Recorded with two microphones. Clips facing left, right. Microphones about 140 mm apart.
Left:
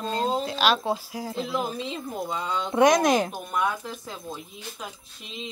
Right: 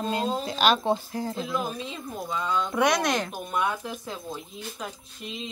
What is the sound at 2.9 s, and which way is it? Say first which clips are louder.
Speech: left 5 dB; 5° left (ahead or behind).